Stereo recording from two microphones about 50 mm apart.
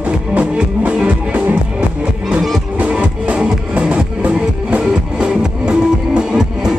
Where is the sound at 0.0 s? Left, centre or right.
Right.